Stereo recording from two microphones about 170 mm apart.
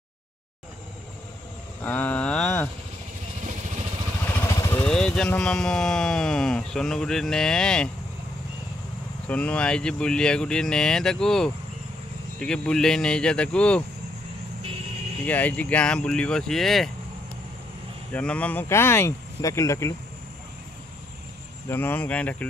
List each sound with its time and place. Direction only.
1.8 s a sound: 10° left (ahead or behind)
4.5 s vehicle: 20° left (ahead or behind)
4.8 s speech: 5° left (ahead or behind)
9.3 s speech: 10° left (ahead or behind)
15.2 s speech: 10° left (ahead or behind)
18.1 s speech: 5° left (ahead or behind)
21.6 s speech: 15° left (ahead or behind)